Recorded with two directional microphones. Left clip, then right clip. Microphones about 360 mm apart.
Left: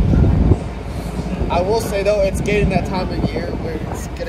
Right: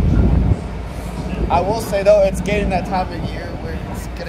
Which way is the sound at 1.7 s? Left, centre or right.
Centre.